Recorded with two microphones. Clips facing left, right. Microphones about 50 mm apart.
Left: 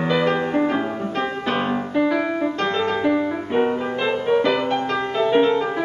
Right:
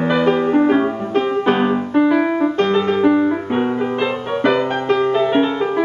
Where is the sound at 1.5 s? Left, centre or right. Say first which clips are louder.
Right 5 dB; centre.